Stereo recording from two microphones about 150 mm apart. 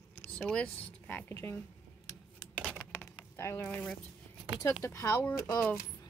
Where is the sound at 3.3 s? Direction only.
20° left (ahead or behind).